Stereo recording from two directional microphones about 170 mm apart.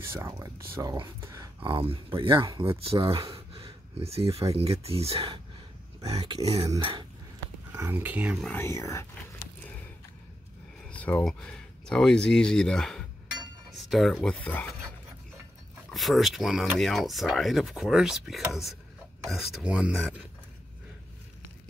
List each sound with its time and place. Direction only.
0.1 s speech: 15° right (ahead or behind); by 3.3 s 30° right (ahead or behind)
3.5 s a sound: 35° right (ahead or behind)
4.5 s speech: 35° right (ahead or behind)
7.7 s speech: 15° right (ahead or behind)
8.5 s speech: 15° left (ahead or behind)
10.9 s speech: 10° left (ahead or behind)
15.9 s speech: centre (ahead or behind)